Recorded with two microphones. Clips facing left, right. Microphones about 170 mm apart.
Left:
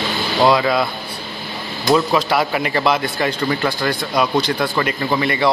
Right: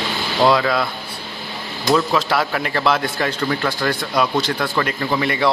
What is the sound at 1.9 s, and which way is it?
Speech, 10° left (ahead or behind).